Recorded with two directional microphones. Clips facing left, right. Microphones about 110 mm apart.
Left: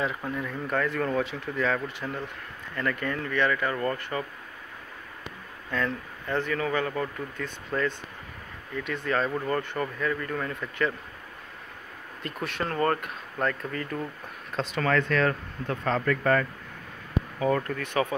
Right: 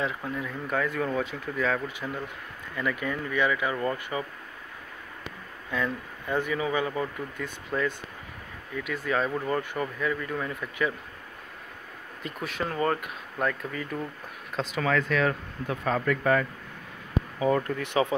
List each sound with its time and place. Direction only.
0.0 s speech: centre (ahead or behind)
5.7 s speech: 10° right (ahead or behind)
12.2 s speech: centre (ahead or behind); by 18.0 s 20° right (ahead or behind)